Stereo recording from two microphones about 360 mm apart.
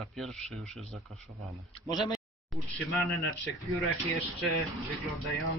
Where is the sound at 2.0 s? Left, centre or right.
Centre.